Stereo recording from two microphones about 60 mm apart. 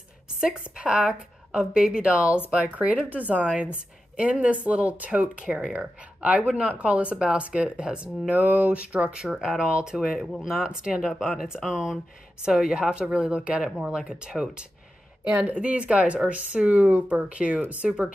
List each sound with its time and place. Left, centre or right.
0.4 s speech: centre